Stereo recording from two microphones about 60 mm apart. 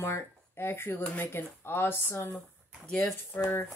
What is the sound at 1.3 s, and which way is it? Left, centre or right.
Speech, left.